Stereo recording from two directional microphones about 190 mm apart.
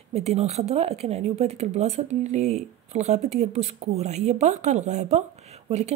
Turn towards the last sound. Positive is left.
turn(degrees=-35)  # may be behind; listen again after turning